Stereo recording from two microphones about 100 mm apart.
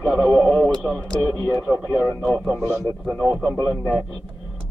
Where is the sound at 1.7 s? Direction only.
20° right (ahead or behind).